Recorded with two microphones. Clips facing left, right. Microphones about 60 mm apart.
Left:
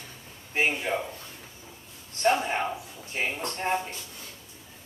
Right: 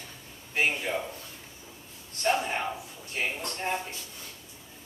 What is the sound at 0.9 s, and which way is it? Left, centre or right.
Speech, left.